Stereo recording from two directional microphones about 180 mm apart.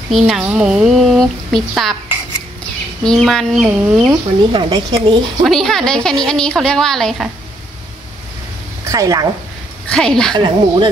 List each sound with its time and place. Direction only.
0.1 s a woman's voice: 5° right (ahead or behind)
3.0 s a woman's voice: 5° left (ahead or behind)
4.1 s speech: 25° right (ahead or behind)
5.4 s a woman's voice: centre (ahead or behind)
8.8 s a woman's voice: 20° right (ahead or behind)
9.8 s a woman's voice: 5° left (ahead or behind)
10.3 s speech: 25° right (ahead or behind)